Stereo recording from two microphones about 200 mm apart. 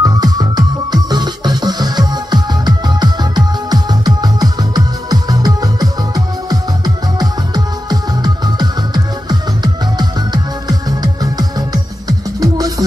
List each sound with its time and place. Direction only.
0.0 s music: 20° right (ahead or behind)